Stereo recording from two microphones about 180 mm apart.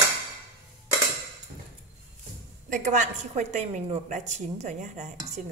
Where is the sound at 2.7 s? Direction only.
45° right (ahead or behind).